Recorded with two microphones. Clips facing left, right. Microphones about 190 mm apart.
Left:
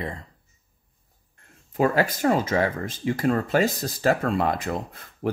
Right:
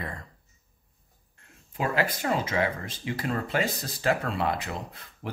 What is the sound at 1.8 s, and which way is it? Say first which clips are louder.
Speech: left 6 dB; 45° left (ahead or behind).